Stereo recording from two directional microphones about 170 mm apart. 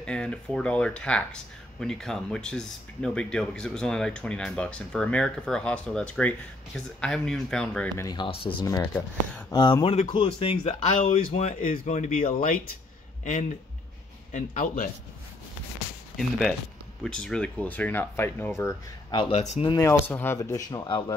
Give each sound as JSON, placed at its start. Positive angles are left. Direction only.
{"t": 0.0, "sound": "speech", "side_deg": 5}
{"t": 8.0, "sound": "speech", "side_deg": 25}
{"t": 16.2, "sound": "speech", "side_deg": 0}
{"t": 19.1, "sound": "speech", "side_deg": 40}
{"t": 19.7, "sound": "speech", "side_deg": 15}